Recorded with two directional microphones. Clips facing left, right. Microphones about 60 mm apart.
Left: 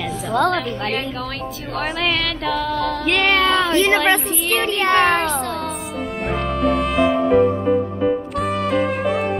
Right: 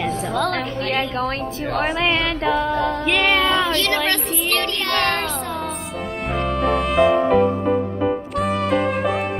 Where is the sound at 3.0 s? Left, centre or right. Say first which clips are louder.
Left 3 dB; centre.